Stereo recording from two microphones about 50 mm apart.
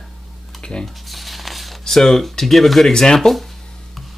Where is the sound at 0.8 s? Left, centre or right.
Centre.